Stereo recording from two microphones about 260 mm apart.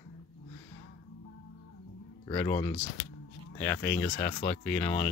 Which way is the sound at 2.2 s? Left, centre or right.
Centre.